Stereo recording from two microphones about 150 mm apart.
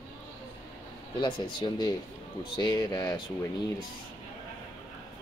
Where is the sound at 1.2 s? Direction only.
30° left (ahead or behind).